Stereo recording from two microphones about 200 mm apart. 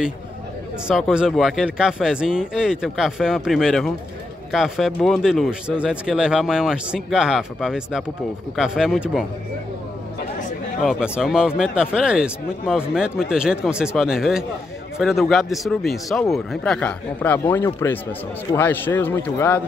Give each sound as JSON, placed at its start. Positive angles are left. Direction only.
{"t": 0.8, "sound": "speech", "side_deg": -5}
{"t": 10.8, "sound": "a man's voice", "side_deg": 0}